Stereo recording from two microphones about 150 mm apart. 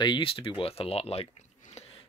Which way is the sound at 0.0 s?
35° left (ahead or behind).